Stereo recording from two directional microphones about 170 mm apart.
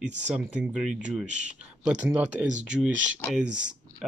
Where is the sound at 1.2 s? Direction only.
45° right (ahead or behind).